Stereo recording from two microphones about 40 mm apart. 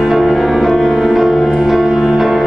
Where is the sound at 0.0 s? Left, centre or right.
Centre.